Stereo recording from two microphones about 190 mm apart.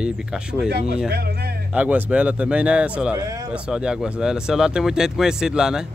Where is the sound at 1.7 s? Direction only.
5° right (ahead or behind).